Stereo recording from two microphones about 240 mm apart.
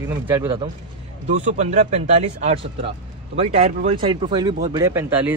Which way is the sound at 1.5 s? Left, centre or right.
Right.